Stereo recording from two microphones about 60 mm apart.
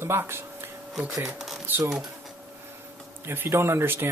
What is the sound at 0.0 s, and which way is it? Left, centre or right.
Speech, right.